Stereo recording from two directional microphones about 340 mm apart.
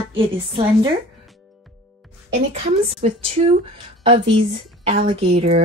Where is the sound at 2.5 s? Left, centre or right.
Centre.